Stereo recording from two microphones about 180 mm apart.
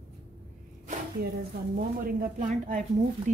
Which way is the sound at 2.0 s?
50° right (ahead or behind).